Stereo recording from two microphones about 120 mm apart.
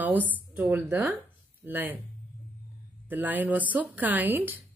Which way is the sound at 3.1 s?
15° right (ahead or behind).